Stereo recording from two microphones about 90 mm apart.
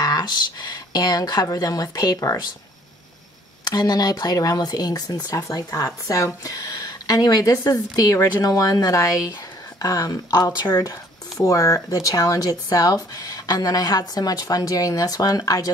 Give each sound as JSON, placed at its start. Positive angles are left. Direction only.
{"t": 0.0, "sound": "speech", "side_deg": 50}
{"t": 3.6, "sound": "speech", "side_deg": 45}